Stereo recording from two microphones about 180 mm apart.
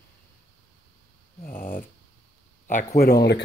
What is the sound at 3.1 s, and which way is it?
Speech, 65° left (ahead or behind).